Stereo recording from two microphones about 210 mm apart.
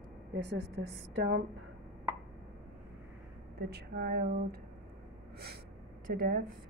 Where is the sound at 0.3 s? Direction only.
55° right (ahead or behind).